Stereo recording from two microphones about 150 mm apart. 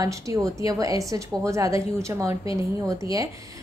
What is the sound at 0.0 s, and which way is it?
A woman's voice, 20° right (ahead or behind).